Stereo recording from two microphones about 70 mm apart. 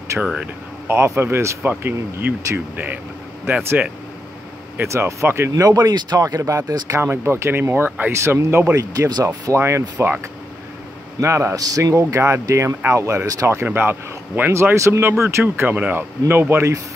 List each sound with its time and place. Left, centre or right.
0.2 s speech: centre
0.8 s speech: right
3.5 s speech: right
4.8 s speech: right
5.5 s speech: right
7.0 s speech: right
8.7 s speech: right
11.1 s speech: right
11.5 s speech: right
13.7 s speech: right
14.5 s speech: right
15.7 s speech: centre
16.0 s speech: right